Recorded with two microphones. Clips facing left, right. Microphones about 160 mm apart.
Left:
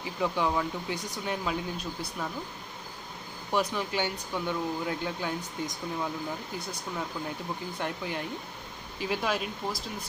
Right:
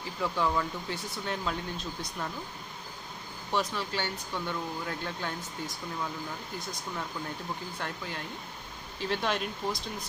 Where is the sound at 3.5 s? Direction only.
15° left (ahead or behind).